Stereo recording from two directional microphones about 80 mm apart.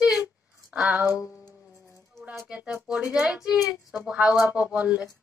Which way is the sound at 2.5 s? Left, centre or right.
Centre.